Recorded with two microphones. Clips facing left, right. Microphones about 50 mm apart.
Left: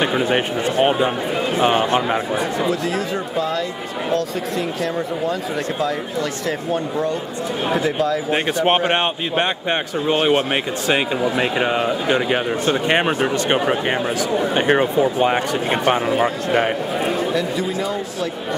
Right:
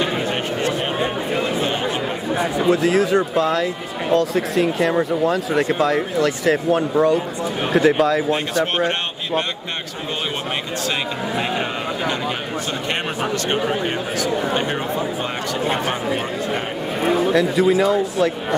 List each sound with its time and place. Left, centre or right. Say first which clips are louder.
0.7 s a sound: left 7 dB; centre
2.9 s speech: right 6 dB; centre
8.6 s speech: left 4 dB; left
14.7 s speech: left 7 dB; left
17.1 s speech: right 3 dB; centre